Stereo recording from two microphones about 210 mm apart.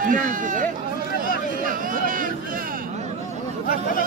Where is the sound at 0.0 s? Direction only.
40° right (ahead or behind).